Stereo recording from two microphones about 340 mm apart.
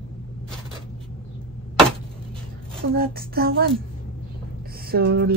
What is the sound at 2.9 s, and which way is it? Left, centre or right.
Speech, right.